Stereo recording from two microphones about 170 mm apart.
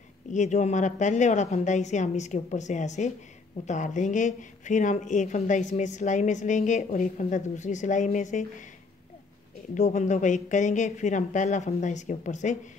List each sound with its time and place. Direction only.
0.3 s a woman's voice: 45° left (ahead or behind)
9.8 s a woman's voice: 45° left (ahead or behind)